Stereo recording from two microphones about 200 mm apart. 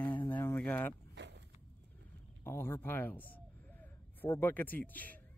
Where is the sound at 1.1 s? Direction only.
60° right (ahead or behind).